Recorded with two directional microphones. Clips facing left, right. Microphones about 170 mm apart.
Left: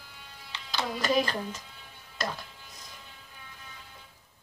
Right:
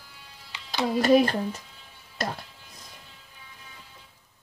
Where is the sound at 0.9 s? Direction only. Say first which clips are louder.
Right 8 dB; 55° right (ahead or behind).